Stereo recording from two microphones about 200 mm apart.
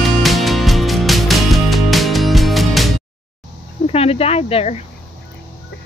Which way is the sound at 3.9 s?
30° left (ahead or behind).